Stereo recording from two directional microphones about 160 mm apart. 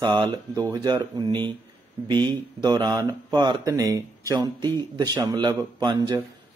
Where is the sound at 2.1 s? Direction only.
25° right (ahead or behind).